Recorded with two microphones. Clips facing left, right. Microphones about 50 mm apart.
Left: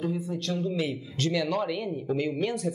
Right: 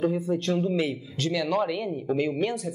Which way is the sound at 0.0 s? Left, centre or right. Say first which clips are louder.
Right 5 dB; right.